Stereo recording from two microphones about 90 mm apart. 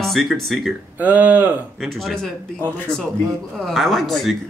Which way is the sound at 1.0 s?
20° right (ahead or behind).